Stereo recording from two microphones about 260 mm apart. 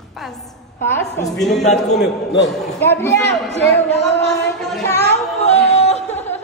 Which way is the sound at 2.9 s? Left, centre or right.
Centre.